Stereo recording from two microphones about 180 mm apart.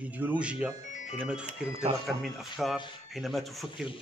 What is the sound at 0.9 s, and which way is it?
Music, 45° left (ahead or behind).